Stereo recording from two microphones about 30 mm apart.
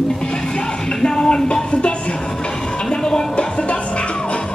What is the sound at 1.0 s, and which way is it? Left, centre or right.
Music, left.